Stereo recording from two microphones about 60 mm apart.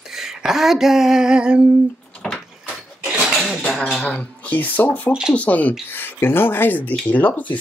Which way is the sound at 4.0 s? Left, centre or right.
Left.